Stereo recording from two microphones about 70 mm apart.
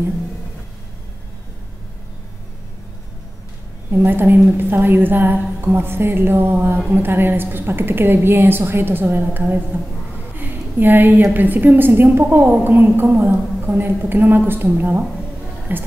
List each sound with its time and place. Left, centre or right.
3.9 s a woman's voice: right
10.3 s a sound: right
11.3 s a woman's voice: right